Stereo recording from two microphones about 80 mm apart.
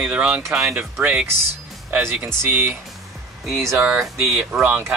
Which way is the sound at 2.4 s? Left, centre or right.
Right.